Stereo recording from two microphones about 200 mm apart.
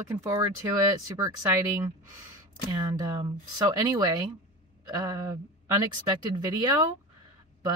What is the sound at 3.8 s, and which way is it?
Speech, 20° right (ahead or behind).